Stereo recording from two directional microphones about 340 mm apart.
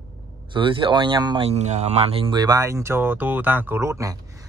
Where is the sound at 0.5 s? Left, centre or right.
Centre.